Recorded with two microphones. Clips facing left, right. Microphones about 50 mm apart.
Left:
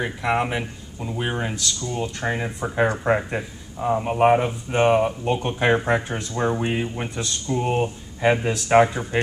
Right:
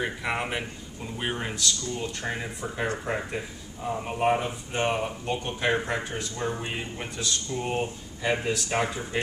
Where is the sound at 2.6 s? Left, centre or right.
Left.